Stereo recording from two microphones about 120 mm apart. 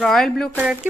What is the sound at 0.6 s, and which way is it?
Speech, 10° right (ahead or behind).